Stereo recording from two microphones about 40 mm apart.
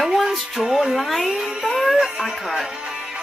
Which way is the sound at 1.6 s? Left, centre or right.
Centre.